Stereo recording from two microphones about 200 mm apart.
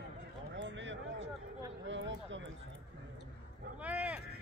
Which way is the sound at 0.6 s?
65° right (ahead or behind).